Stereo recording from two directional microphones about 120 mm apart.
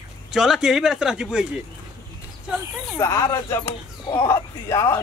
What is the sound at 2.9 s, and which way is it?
Speech, 25° left (ahead or behind).